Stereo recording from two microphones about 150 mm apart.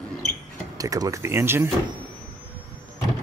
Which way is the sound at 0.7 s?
25° right (ahead or behind).